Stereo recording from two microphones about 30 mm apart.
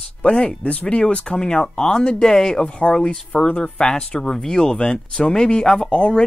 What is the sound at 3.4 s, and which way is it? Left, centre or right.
Speech, left.